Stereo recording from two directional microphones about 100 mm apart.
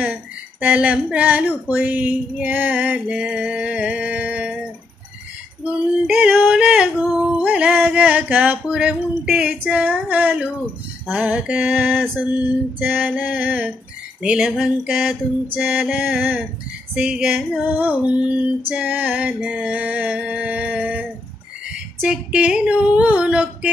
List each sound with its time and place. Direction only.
0.0 s speech: 15° right (ahead or behind)
6.0 s speech: 10° right (ahead or behind)